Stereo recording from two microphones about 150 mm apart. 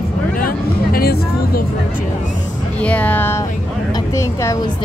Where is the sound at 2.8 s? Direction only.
10° left (ahead or behind).